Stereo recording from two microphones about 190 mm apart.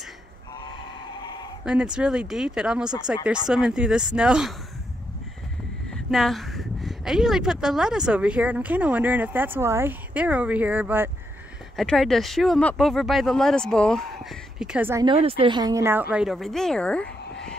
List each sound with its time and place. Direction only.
1.2 s bleat: 25° left (ahead or behind)
1.6 s speech: 5° right (ahead or behind)
6.0 s speech: centre (ahead or behind)
11.7 s speech: centre (ahead or behind)
15.0 s speech: 30° right (ahead or behind); by 17.1 s 5° left (ahead or behind)